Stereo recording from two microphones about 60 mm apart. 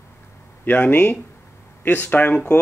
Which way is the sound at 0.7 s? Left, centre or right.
Left.